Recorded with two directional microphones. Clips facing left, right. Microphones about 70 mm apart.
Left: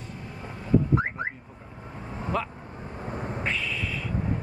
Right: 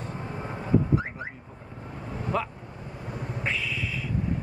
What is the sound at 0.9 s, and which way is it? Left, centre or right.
Car alarm, left.